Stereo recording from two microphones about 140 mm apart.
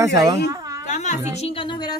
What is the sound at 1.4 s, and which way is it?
Speech, 40° left (ahead or behind).